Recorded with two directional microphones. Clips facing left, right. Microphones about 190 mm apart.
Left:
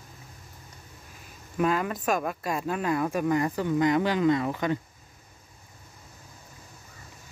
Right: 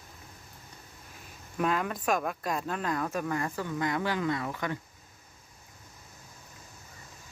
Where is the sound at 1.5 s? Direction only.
5° left (ahead or behind); by 4.8 s 25° left (ahead or behind).